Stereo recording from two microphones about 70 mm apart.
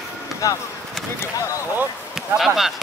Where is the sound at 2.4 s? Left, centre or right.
Centre.